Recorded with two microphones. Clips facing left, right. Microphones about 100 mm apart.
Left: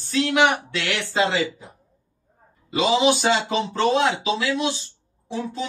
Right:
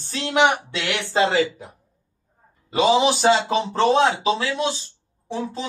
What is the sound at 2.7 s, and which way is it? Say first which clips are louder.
Speech: right 1 dB; 40° right (ahead or behind).